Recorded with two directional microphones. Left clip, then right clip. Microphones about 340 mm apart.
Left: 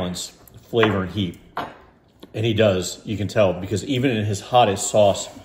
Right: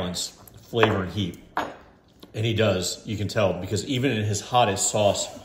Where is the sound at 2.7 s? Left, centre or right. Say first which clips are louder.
Left 2 dB; centre.